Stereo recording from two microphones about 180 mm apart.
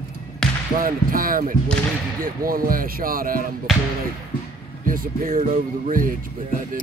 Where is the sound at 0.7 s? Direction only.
50° right (ahead or behind).